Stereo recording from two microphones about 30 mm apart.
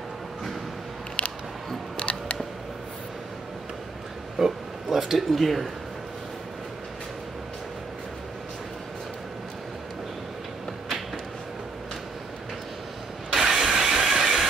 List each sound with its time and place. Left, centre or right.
2.0 s music: left
4.4 s oink: centre
4.8 s speech: centre
13.3 s mechanisms: centre